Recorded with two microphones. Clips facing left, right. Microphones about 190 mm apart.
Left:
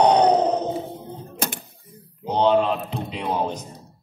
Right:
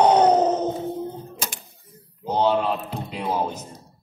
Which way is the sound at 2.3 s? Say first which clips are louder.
Left 2 dB; 5° right (ahead or behind).